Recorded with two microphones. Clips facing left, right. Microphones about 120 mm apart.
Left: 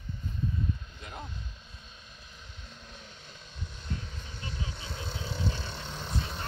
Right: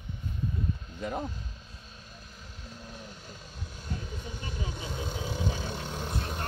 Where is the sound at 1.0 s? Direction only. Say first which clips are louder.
Right 10 dB; 45° right (ahead or behind).